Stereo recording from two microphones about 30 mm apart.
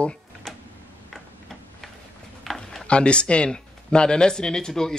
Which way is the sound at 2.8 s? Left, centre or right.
Left.